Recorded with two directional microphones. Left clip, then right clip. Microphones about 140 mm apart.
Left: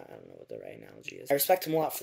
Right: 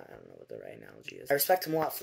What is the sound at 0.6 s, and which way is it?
Speech, 15° left (ahead or behind).